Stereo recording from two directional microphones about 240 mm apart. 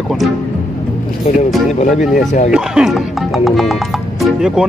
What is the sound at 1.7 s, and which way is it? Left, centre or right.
Speech, left.